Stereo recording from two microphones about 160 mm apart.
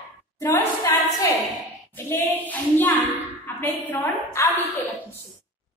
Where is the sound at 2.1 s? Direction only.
15° left (ahead or behind).